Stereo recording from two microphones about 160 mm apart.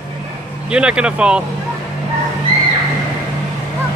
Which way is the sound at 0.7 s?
5° right (ahead or behind).